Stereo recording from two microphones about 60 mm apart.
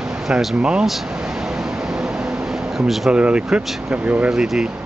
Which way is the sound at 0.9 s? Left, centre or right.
Centre.